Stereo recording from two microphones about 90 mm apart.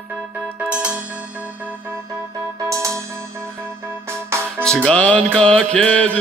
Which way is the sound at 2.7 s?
35° right (ahead or behind).